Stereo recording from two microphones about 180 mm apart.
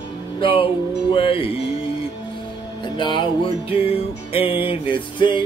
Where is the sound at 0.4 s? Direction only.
30° left (ahead or behind).